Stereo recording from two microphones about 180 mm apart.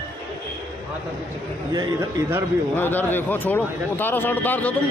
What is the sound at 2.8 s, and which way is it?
Speech, 10° left (ahead or behind).